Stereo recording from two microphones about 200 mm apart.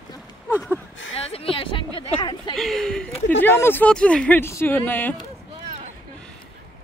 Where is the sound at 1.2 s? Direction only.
30° left (ahead or behind).